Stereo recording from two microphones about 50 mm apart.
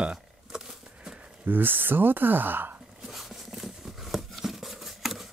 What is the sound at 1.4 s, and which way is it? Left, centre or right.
Speech, right.